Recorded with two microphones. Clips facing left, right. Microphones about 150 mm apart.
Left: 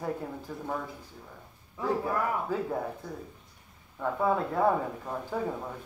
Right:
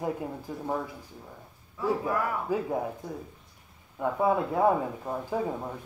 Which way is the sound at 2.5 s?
10° right (ahead or behind).